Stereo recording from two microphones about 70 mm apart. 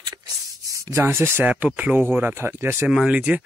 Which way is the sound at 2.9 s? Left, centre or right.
Centre.